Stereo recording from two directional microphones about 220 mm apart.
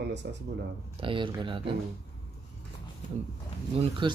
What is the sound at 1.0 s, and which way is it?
Speech, 20° right (ahead or behind).